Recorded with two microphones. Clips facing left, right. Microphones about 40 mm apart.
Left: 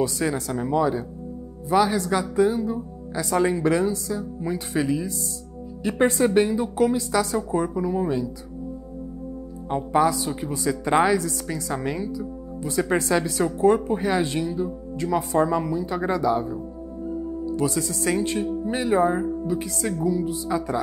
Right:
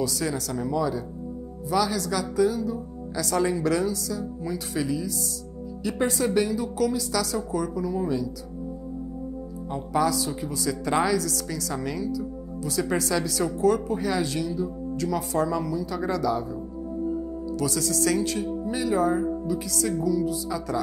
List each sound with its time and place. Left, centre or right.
0.0 s a woman's voice: left
9.9 s speech: left
17.6 s speech: left